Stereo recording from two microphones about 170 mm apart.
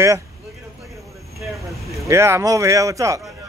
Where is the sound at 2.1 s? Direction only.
15° right (ahead or behind).